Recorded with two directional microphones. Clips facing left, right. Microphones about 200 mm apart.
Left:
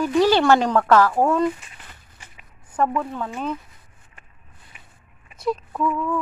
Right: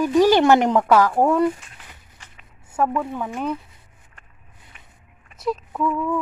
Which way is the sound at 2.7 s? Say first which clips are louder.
Even; 5° right (ahead or behind).